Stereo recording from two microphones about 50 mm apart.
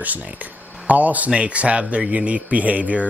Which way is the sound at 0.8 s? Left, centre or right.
Right.